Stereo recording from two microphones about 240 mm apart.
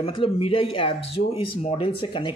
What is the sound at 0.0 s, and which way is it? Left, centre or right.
Speech, left.